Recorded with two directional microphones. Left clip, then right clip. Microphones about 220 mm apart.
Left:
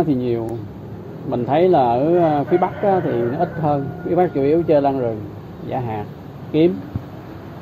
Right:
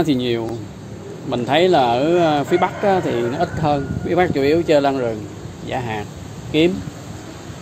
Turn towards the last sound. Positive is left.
turn(degrees=-5)  # may be behind; listen again after turning